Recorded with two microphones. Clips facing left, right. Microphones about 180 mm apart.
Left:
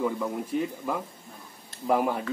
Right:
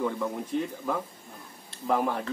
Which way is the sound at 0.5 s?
5° left (ahead or behind).